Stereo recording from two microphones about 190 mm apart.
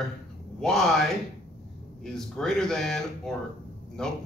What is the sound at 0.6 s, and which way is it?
Speech, centre (ahead or behind).